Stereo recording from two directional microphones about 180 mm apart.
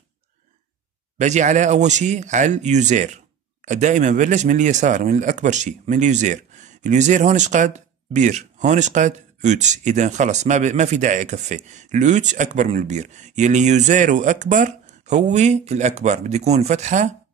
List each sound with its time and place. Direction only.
1.1 s speech: 40° right (ahead or behind)